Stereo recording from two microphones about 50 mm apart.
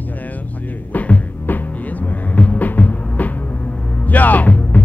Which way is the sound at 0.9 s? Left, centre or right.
Left.